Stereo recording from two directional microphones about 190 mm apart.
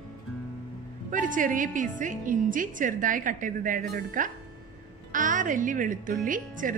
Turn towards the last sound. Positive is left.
turn(degrees=-45)  # may be behind; listen again after turning